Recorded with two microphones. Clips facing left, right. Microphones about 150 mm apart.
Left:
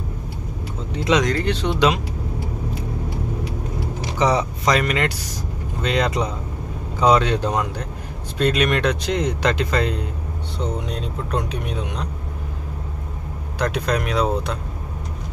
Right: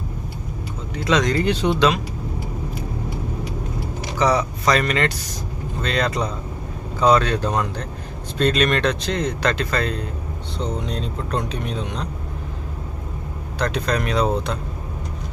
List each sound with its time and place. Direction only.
0.9 s speech: 20° left (ahead or behind)
1.2 s speech: 5° right (ahead or behind)
4.2 s speech: 20° left (ahead or behind)
13.6 s speech: 10° left (ahead or behind)